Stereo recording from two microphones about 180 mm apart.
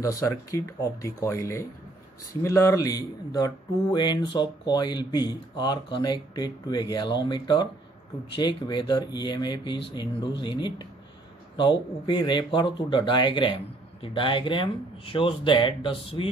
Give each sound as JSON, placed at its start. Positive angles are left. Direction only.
{"t": 0.0, "sound": "speech", "side_deg": 15}